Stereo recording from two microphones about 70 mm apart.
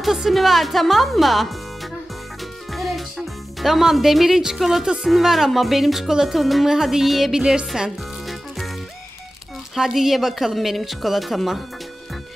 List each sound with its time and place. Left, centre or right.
0.0 s speech: centre
7.6 s music: centre
9.8 s speech: centre